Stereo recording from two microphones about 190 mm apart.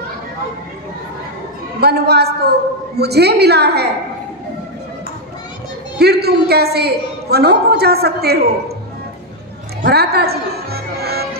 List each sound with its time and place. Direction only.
1.8 s a woman's voice: 55° right (ahead or behind)
5.9 s a woman's voice: 60° right (ahead or behind)
9.8 s music: 60° right (ahead or behind)